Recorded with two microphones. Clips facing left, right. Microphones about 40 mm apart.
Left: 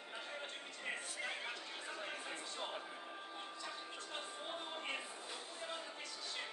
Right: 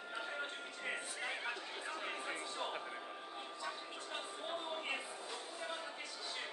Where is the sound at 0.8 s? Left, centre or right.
Centre.